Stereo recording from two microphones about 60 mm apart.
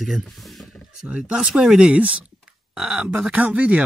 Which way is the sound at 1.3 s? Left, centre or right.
Centre.